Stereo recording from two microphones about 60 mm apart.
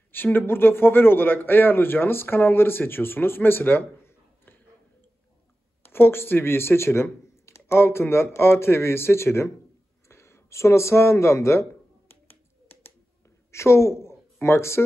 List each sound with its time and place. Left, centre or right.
0.1 s speech: left
5.8 s speech: left
12.1 s finger snapping: left
13.5 s a woman's voice: left